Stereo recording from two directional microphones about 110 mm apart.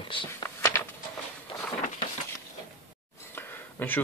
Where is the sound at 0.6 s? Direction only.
25° left (ahead or behind).